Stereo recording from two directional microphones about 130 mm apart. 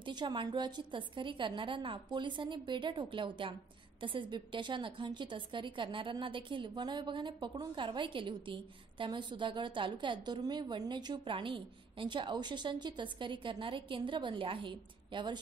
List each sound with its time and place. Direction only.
0.0 s a woman's voice: 35° right (ahead or behind)